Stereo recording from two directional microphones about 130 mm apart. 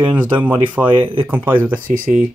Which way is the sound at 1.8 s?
90° right.